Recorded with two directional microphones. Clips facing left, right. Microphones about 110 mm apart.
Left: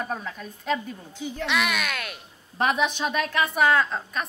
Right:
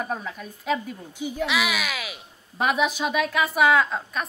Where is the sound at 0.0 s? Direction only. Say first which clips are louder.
Right 1 dB; 5° right (ahead or behind).